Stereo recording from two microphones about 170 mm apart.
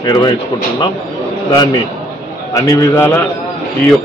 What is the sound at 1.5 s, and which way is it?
A man's voice, 25° left (ahead or behind).